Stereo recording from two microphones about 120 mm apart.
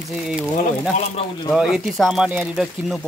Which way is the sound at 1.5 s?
5° right (ahead or behind).